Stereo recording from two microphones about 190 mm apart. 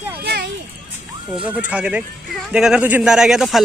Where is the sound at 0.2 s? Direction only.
60° right (ahead or behind).